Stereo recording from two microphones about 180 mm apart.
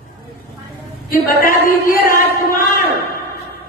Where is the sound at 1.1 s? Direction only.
50° left (ahead or behind).